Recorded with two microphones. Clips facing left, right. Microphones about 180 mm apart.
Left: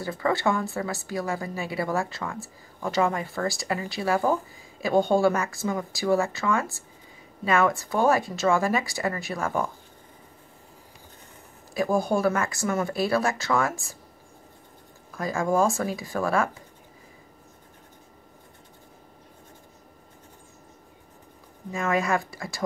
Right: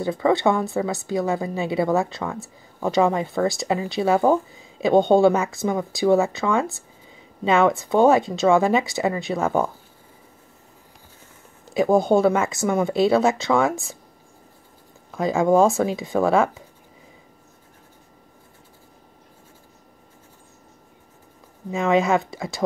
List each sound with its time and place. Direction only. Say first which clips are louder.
0.0 s speech: right 6 dB; 20° right (ahead or behind)
11.7 s speech: right 7 dB; 20° right (ahead or behind)
15.1 s speech: right 7 dB; 20° right (ahead or behind)
21.6 s speech: right 6 dB; 25° right (ahead or behind)